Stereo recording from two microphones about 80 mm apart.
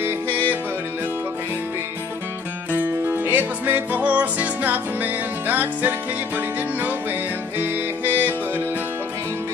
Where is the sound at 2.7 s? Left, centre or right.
Right.